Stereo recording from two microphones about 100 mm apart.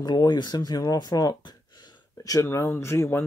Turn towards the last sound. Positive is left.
turn(degrees=25)  # may be behind; listen again after turning